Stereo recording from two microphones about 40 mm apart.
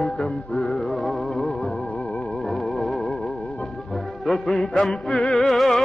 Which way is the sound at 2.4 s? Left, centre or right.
Centre.